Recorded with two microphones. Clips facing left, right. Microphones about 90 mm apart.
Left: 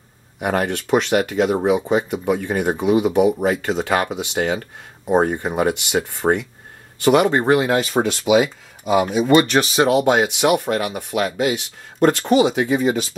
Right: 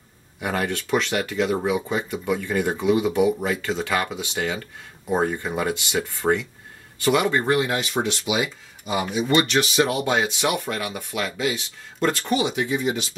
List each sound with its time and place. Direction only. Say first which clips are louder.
0.4 s speech: left 5 dB; 50° left (ahead or behind)
1.9 s speech: left 7 dB; 20° left (ahead or behind)
2.2 s speech: left 4 dB; 50° left (ahead or behind)
6.2 s speech: left 3 dB; 40° left (ahead or behind)
9.9 s speech: left 7 dB; 55° left (ahead or behind)